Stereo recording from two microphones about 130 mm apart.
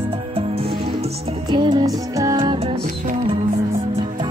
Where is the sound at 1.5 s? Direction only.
35° right (ahead or behind).